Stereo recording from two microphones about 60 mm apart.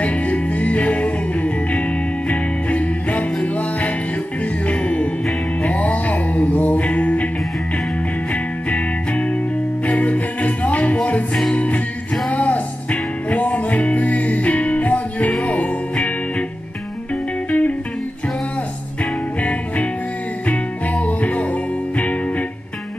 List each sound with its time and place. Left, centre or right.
0.0 s music: left
8.3 s music: left
17.5 s music: left
20.4 s music: left